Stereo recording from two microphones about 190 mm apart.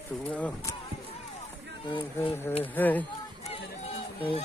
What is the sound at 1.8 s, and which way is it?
Speech, 25° left (ahead or behind).